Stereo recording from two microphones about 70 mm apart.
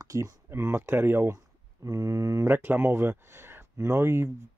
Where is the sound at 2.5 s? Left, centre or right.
Right.